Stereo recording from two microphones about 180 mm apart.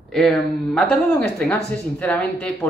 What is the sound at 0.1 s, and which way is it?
Speech, 5° left (ahead or behind).